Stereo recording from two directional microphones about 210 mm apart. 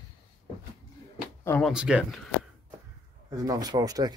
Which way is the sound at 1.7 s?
5° right (ahead or behind).